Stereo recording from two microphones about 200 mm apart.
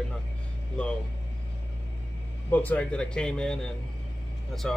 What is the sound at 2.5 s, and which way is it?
A man's voice, 10° left (ahead or behind).